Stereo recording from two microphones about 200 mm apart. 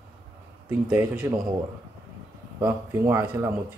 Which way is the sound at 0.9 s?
10° right (ahead or behind).